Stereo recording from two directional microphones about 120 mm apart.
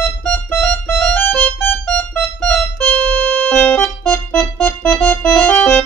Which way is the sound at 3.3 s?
15° left (ahead or behind).